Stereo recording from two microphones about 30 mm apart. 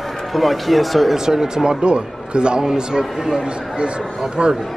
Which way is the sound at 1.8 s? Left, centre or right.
Right.